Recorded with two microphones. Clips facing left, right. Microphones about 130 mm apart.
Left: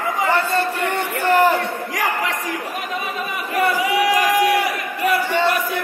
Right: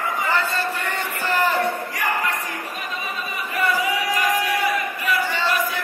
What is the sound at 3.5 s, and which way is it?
Crowd, 80° left.